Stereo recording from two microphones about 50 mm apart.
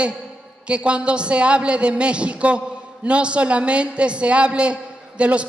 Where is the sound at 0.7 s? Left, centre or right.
Right.